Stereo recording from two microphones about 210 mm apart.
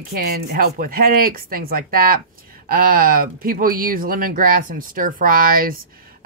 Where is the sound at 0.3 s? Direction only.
45° right (ahead or behind).